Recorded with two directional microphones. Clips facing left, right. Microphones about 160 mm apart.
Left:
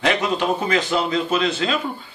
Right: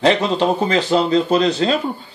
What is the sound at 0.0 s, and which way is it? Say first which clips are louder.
A man's voice: right 5 dB; 30° right (ahead or behind).